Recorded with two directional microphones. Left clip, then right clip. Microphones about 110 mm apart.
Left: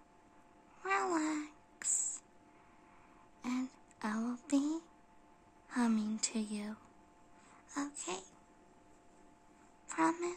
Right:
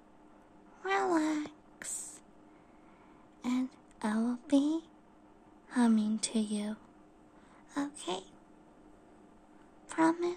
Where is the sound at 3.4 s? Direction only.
5° right (ahead or behind).